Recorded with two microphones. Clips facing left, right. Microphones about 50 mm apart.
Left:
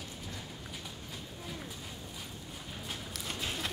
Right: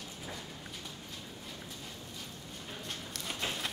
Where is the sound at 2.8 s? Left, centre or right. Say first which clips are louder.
Left 1 dB; centre.